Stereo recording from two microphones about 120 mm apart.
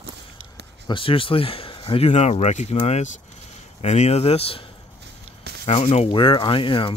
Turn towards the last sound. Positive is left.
turn(degrees=45)  # may be behind; listen again after turning